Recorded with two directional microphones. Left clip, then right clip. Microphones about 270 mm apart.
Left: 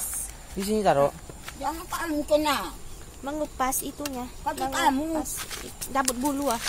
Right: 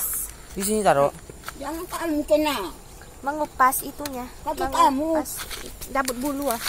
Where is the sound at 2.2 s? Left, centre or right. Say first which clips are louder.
Right 2 dB; left.